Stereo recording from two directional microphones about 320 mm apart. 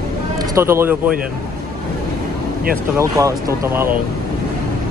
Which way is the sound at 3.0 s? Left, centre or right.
Centre.